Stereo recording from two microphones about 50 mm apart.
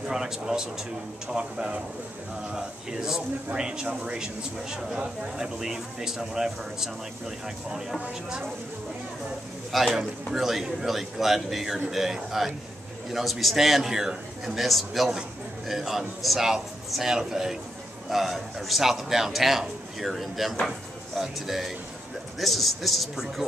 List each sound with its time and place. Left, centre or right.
0.1 s speech: centre
9.7 s a man's voice: centre